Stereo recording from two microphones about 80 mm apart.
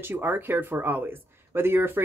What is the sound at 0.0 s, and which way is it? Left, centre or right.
Speech, right.